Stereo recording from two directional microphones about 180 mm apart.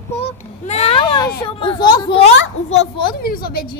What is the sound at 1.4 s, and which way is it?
Speech, 30° left (ahead or behind).